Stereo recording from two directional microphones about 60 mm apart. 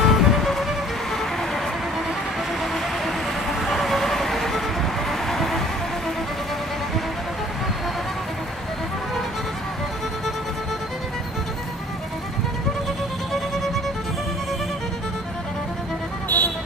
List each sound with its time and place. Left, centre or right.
0.0 s music: centre
2.6 s vehicle: centre
5.2 s music: centre
16.3 s music: left